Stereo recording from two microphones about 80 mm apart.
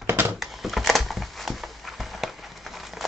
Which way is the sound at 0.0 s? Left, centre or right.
Right.